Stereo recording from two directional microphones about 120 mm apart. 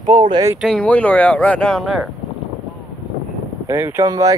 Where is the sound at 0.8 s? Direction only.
10° left (ahead or behind).